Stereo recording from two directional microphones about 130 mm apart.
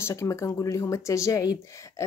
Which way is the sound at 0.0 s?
25° left (ahead or behind).